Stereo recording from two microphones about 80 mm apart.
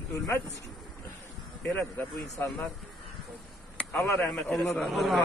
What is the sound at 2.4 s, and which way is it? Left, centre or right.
Speech, left.